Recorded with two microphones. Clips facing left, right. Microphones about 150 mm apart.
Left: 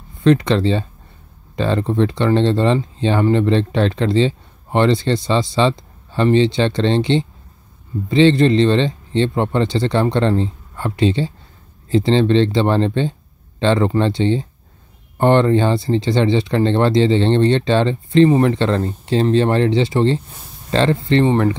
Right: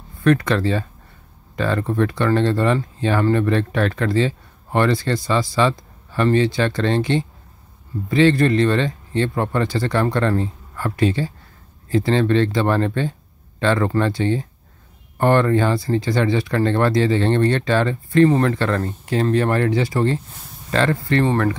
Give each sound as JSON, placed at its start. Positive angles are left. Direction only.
{"t": 0.2, "sound": "speech", "side_deg": 20}